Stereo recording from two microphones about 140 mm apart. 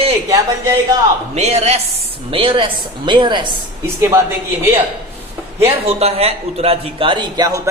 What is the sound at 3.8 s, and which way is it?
Speech, 20° right (ahead or behind).